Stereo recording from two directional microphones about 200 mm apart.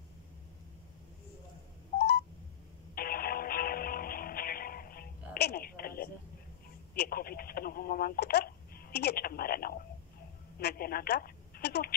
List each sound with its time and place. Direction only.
2.0 s telephone dialing: 55° left (ahead or behind)
2.9 s music: 50° left (ahead or behind)
7.0 s radio: 50° left (ahead or behind)
10.6 s a woman's voice: 50° left (ahead or behind)